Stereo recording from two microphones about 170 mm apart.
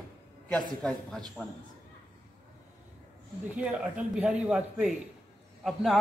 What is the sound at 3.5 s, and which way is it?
A man's voice, 5° right (ahead or behind).